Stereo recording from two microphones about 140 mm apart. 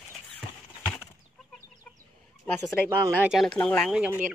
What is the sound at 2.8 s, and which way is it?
Speech, 15° right (ahead or behind).